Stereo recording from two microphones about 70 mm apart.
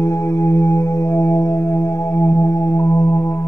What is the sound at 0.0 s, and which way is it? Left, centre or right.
Music, left.